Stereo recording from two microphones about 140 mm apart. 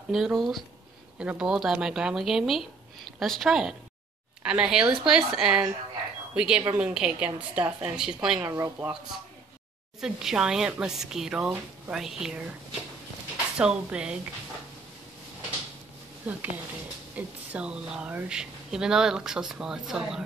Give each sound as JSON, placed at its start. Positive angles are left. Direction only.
{"t": 0.1, "sound": "a woman's voice", "side_deg": 0}
{"t": 8.5, "sound": "speech", "side_deg": -25}
{"t": 9.9, "sound": "speech", "side_deg": -5}
{"t": 13.6, "sound": "a woman's voice", "side_deg": -10}
{"t": 16.3, "sound": "a woman's voice", "side_deg": -10}